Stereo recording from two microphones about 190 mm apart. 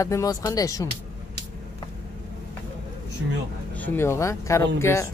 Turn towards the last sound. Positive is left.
turn(degrees=15)  # may be behind; listen again after turning